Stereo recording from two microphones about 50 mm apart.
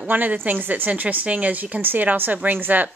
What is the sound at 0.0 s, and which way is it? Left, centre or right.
Speech, right.